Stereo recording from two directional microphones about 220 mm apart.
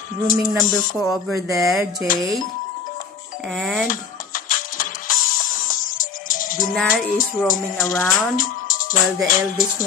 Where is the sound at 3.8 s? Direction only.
40° left (ahead or behind).